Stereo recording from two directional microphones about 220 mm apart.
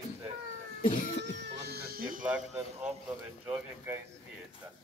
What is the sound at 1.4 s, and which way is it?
Cat, 45° right (ahead or behind).